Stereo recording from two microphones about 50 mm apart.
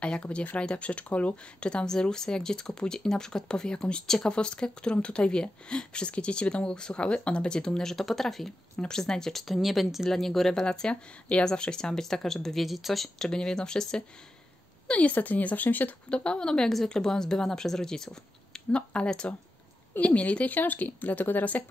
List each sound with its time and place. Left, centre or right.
0.0 s speech: left; by 13.3 s centre
13.3 s speech: centre
14.9 s a woman's voice: left
16.1 s speech: left
18.7 s speech: left
20.0 s a woman's voice: left